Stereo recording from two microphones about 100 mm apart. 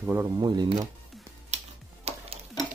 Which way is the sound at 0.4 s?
45° right (ahead or behind).